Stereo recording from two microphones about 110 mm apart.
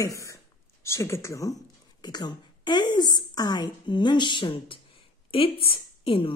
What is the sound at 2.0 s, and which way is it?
A woman's voice, 40° left (ahead or behind).